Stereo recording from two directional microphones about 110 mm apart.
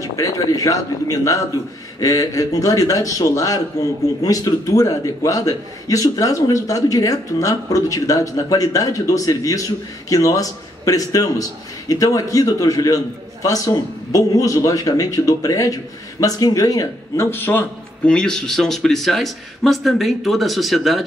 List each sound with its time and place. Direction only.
0.0 s a man's voice: 30° left (ahead or behind)
17.3 s speech: 20° left (ahead or behind); by 21.0 s centre (ahead or behind)